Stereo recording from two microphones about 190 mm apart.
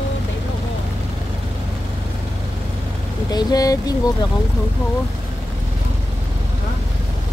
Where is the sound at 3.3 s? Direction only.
20° left (ahead or behind).